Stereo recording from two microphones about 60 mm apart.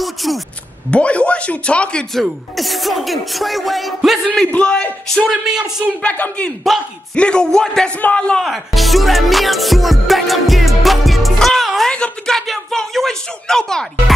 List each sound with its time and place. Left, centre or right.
0.0 s a sound: centre
0.8 s speech: left
2.1 s speech: centre
4.6 s speech: centre
5.2 s speech: centre
6.0 s speech: left
6.7 s speech: centre
7.2 s speech: centre
8.0 s speech: left
8.4 s music: centre
11.9 s a sound: centre